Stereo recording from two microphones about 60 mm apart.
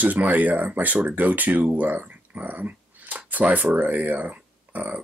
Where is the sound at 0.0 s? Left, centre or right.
Right.